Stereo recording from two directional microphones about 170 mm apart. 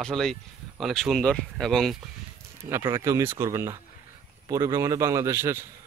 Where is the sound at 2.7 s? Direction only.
15° right (ahead or behind).